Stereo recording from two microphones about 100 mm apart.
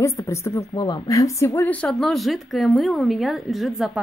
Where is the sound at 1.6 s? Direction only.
15° left (ahead or behind).